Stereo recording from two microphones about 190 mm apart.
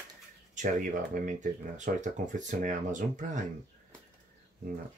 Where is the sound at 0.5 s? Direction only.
40° right (ahead or behind).